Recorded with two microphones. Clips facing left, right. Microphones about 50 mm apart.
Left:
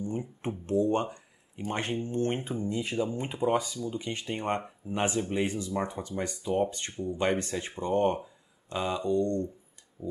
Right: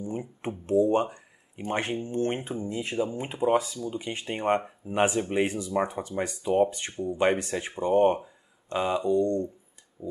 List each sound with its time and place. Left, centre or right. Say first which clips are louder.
0.0 s speech: even; centre